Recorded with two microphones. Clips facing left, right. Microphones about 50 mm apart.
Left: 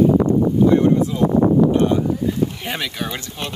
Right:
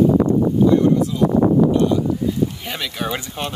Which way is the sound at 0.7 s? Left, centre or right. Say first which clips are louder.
Even; left.